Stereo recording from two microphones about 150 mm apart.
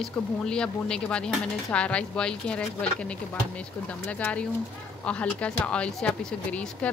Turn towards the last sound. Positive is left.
turn(degrees=5)  # may be behind; listen again after turning